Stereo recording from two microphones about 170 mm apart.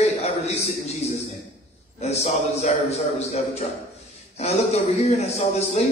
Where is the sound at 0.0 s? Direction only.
40° left (ahead or behind).